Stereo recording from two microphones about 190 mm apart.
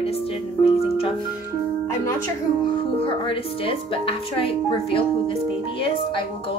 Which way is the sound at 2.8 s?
30° left (ahead or behind).